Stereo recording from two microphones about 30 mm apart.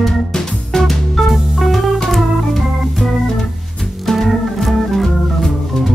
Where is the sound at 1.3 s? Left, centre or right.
Centre.